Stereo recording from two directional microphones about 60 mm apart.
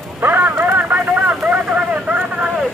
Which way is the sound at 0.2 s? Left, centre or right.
Right.